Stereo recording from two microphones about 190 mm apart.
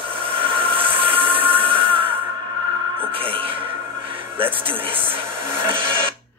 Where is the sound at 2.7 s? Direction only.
25° right (ahead or behind).